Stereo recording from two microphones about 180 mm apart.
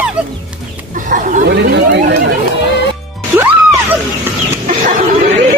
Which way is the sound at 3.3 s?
15° right (ahead or behind).